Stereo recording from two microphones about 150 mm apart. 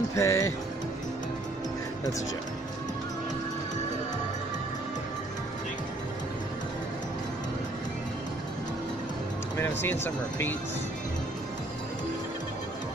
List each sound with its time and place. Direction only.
0.1 s music: 20° left (ahead or behind)
9.6 s speech: 15° left (ahead or behind)